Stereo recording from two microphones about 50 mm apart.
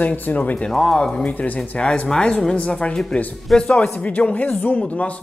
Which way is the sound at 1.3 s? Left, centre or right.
Left.